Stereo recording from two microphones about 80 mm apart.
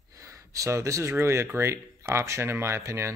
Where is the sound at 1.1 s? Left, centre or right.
Right.